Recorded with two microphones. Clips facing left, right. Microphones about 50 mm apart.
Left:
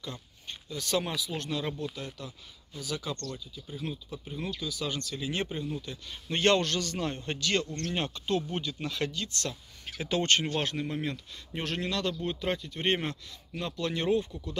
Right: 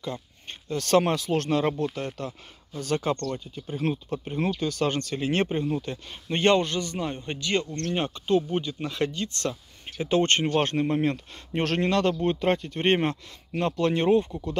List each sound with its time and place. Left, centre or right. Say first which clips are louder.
0.0 s a sound: right 7 dB; right
0.7 s speech: right 9 dB; right
1.6 s speech: right 8 dB; right
6.2 s speech: right 4 dB; right